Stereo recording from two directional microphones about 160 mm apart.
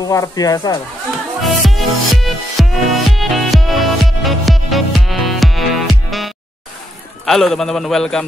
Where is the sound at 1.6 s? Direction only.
Centre (ahead or behind).